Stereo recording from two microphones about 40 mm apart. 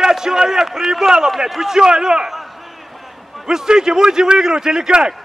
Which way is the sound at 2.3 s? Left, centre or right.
Centre.